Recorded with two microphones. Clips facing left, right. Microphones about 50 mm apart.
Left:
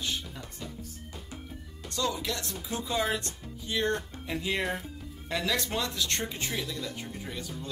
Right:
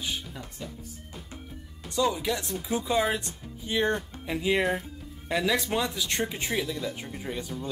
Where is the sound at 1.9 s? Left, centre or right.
Centre.